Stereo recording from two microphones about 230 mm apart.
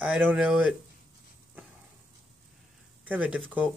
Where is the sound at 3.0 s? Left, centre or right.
Centre.